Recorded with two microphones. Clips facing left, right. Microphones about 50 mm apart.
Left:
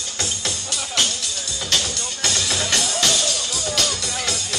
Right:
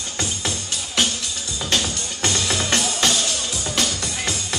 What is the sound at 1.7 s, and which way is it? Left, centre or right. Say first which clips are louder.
Music: right 1 dB; right.